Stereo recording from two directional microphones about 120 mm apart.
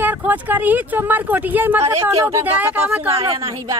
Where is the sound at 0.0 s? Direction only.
15° right (ahead or behind).